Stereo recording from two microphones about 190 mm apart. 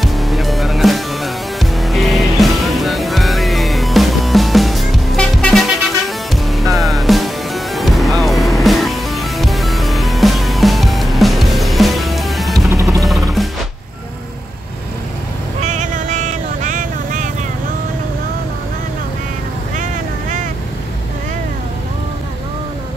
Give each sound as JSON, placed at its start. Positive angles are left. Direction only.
{"t": 0.0, "sound": "music", "side_deg": 0}
{"t": 15.6, "sound": "vehicle", "side_deg": -40}
{"t": 19.8, "sound": "vehicle", "side_deg": -40}